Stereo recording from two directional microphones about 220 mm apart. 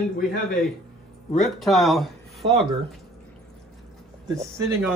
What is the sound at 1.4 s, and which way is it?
Speech, centre (ahead or behind).